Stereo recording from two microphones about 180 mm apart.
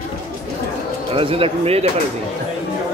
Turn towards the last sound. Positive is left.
turn(degrees=-35)  # may be behind; listen again after turning